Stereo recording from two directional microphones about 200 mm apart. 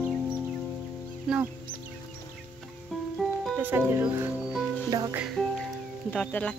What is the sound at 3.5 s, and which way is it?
Music, 10° right (ahead or behind).